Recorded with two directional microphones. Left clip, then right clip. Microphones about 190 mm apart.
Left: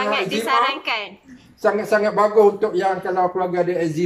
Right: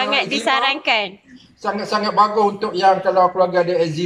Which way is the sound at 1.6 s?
5° right (ahead or behind).